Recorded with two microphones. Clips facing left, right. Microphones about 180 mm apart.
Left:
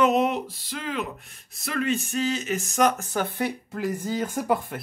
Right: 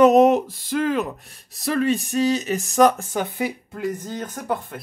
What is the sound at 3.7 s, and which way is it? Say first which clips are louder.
Speech: even; 5° left (ahead or behind).